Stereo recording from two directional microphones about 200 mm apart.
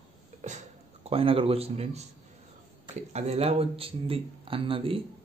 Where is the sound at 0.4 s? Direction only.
35° right (ahead or behind).